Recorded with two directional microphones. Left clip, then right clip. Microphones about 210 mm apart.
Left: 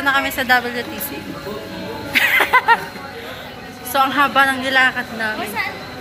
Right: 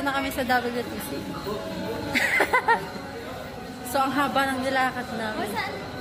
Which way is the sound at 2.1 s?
20° right (ahead or behind).